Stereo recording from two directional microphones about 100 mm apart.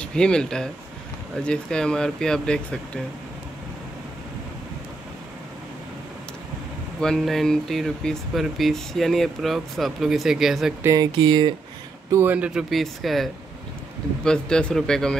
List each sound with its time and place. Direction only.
0.0 s speech: 10° left (ahead or behind)
7.0 s speech: 5° left (ahead or behind)
11.0 s speech: 50° right (ahead or behind)
12.1 s speech: 25° right (ahead or behind)
12.4 s speech: 5° right (ahead or behind)